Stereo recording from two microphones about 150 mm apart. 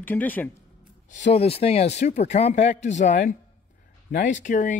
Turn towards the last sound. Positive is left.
turn(degrees=60)  # may be behind; listen again after turning